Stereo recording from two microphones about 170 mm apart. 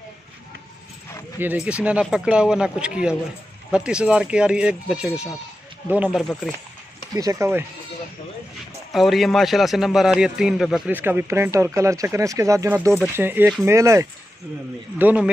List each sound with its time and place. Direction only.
1.4 s a man's voice: 10° right (ahead or behind)
7.2 s speech: 20° right (ahead or behind)
8.9 s a man's voice: centre (ahead or behind)